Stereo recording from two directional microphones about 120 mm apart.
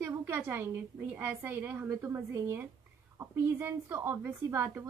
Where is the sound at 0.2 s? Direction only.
15° right (ahead or behind).